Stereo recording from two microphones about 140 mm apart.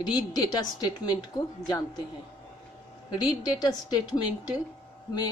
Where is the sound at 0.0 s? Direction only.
30° left (ahead or behind).